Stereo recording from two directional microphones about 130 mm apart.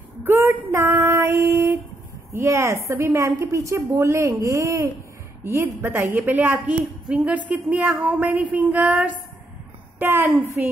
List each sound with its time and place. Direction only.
0.2 s female singing: 15° right (ahead or behind)
2.3 s a woman's voice: 25° right (ahead or behind)